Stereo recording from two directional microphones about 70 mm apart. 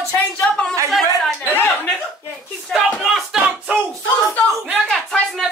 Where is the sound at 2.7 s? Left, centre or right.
Centre.